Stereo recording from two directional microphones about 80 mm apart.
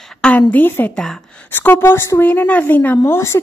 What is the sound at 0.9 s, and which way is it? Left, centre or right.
Speech, centre.